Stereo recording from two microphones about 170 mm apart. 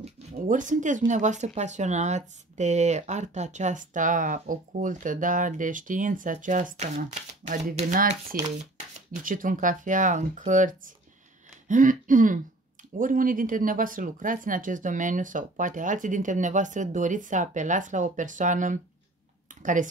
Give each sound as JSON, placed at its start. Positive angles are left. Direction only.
{"t": 0.0, "sound": "speech", "side_deg": -45}